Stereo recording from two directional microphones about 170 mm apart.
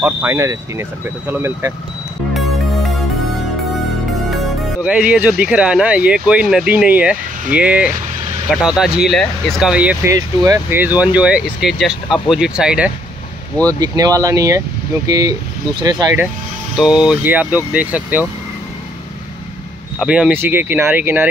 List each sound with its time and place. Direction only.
0.0 s speech: 15° right (ahead or behind)
4.8 s speech: 5° right (ahead or behind)
10.1 s speech: 20° right (ahead or behind)
13.7 s speech: 20° right (ahead or behind)
16.7 s speech: 5° right (ahead or behind)
20.0 s speech: 5° right (ahead or behind)